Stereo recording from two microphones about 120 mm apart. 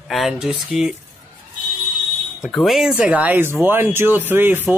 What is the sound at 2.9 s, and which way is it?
Speech, 10° right (ahead or behind).